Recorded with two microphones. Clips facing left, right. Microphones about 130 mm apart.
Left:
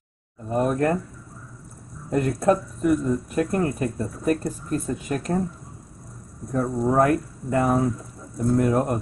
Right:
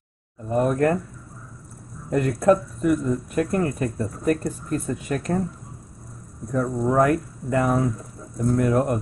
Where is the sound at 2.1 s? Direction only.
30° left (ahead or behind).